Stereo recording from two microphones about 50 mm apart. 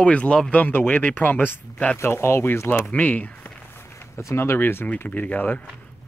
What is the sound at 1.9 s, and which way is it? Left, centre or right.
Speech, left.